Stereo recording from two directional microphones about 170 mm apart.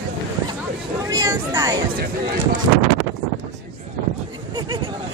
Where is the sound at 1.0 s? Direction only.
20° right (ahead or behind).